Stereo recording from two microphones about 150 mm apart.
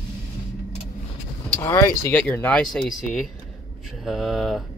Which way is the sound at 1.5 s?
20° left (ahead or behind).